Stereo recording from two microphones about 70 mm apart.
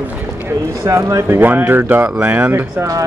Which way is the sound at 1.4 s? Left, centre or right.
Right.